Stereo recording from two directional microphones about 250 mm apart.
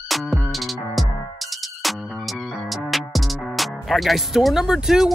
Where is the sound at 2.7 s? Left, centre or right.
Centre.